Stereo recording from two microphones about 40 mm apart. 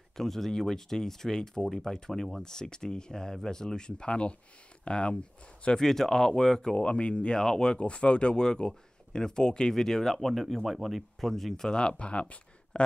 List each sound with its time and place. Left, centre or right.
0.2 s speech: centre; by 5.1 s left
5.8 s speech: centre
6.8 s speech: left
7.3 s speech: centre